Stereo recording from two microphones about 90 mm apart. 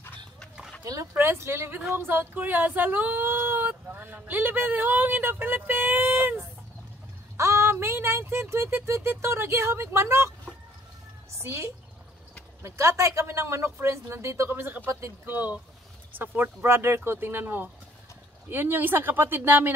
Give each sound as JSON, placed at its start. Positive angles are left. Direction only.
{"t": 1.1, "sound": "speech", "side_deg": -25}
{"t": 11.3, "sound": "a woman's voice", "side_deg": -30}